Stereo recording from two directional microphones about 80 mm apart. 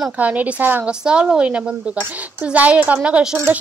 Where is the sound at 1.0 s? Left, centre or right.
Centre.